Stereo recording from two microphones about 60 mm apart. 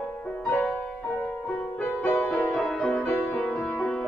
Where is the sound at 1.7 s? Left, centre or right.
Left.